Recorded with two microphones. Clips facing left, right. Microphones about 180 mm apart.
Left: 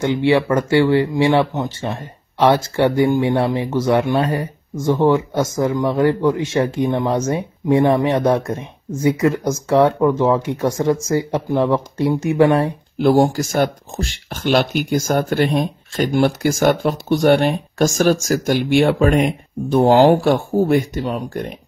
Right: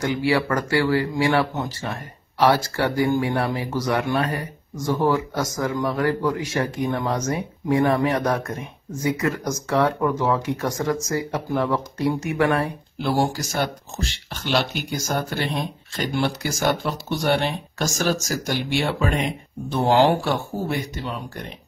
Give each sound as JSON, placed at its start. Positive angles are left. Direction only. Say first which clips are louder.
{"t": 0.0, "sound": "speech", "louder": "left 6 dB", "side_deg": 25}
{"t": 13.0, "sound": "speech", "louder": "left 8 dB", "side_deg": 50}